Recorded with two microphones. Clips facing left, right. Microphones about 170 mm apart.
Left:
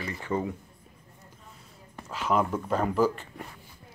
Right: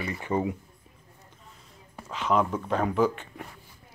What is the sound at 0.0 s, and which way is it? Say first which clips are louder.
Speech: right 2 dB; 15° right (ahead or behind).